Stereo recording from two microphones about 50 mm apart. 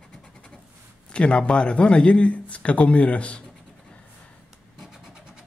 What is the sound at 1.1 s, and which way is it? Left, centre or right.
A man's voice, left.